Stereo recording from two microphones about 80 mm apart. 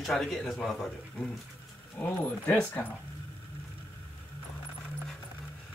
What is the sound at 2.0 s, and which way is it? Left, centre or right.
Speech, centre.